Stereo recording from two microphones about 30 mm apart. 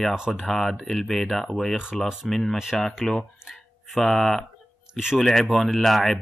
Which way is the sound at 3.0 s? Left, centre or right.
Centre.